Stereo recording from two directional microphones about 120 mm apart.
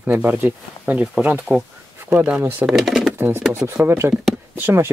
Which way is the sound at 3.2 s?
20° right (ahead or behind).